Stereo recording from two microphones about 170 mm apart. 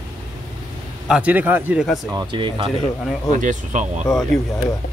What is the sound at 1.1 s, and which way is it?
Speech, 10° right (ahead or behind).